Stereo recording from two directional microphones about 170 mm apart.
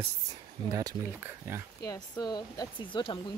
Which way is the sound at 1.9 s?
25° left (ahead or behind).